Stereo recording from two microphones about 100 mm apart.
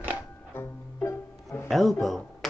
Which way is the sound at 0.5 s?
25° left (ahead or behind).